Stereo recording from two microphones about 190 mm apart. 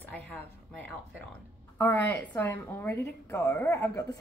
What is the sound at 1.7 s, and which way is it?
A woman's voice, 10° left (ahead or behind).